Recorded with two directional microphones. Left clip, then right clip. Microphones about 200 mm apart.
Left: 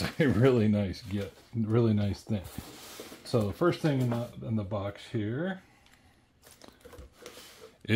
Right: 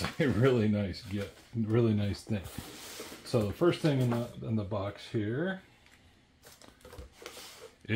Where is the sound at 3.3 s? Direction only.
40° left (ahead or behind).